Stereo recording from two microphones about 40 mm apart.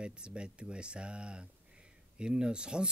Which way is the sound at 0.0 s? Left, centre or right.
Right.